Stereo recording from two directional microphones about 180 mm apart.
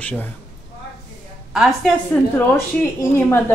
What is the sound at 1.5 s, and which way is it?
A woman's voice, centre (ahead or behind).